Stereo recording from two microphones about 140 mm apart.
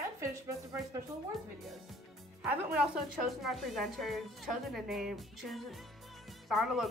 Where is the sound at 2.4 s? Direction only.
5° right (ahead or behind).